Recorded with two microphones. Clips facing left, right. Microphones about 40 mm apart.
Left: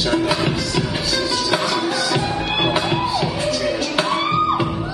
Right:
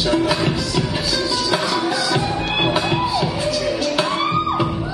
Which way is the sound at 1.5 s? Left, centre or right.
Left.